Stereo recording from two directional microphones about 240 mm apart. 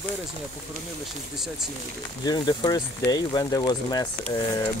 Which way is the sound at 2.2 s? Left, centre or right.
Centre.